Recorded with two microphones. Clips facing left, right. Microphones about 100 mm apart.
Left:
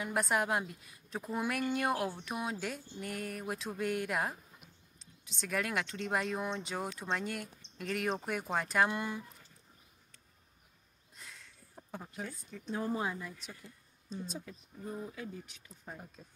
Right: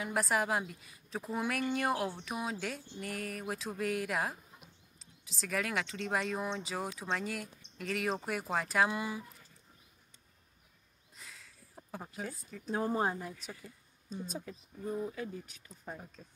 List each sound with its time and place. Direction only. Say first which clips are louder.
0.0 s a woman's voice: even; centre (ahead or behind)
11.1 s a sound: even; centre (ahead or behind)
12.4 s a woman's voice: right 1 dB; 5° right (ahead or behind)
12.7 s speech: right 3 dB; 45° right (ahead or behind)
13.4 s a woman's voice: right 3 dB; 5° right (ahead or behind)
14.2 s speech: right 2 dB; 45° right (ahead or behind)